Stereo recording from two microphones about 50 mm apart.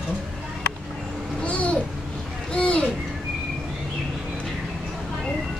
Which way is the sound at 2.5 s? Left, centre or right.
Left.